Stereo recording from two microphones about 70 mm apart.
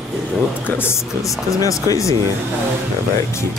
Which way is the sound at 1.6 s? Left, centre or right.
Left.